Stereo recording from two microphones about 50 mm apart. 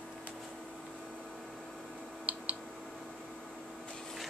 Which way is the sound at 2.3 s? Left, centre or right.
Right.